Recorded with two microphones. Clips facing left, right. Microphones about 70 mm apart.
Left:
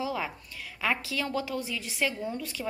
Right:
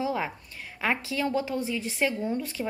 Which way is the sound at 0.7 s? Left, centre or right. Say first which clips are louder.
Right 2 dB; right.